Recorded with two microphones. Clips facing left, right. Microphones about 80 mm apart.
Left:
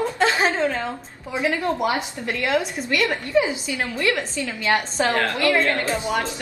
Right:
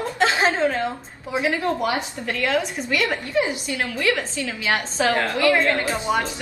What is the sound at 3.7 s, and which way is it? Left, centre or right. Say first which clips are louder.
Speech: right 1 dB; centre.